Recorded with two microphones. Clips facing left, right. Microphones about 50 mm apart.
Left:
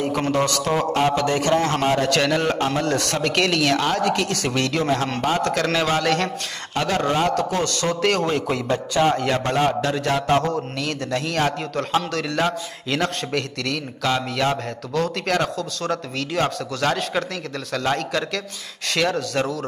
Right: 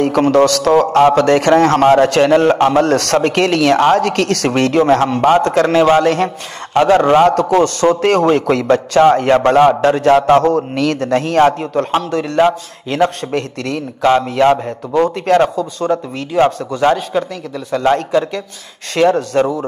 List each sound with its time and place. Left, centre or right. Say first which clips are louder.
0.3 s a man's voice: right 11 dB; right
1.6 s a man's voice: right 11 dB; right
2.0 s a man's voice: right 9 dB; right
4.5 s a man's voice: right 11 dB; right
5.4 s a man's voice: right 9 dB; right
7.2 s a man's voice: right 10 dB; right
8.5 s a man's voice: right 10 dB; right
9.1 s a man's voice: right 11 dB; right
10.4 s a man's voice: right 10 dB; right
10.9 s a man's voice: right 8 dB; right
12.4 s a man's voice: right 12 dB; right
15.5 s a man's voice: right 8 dB; centre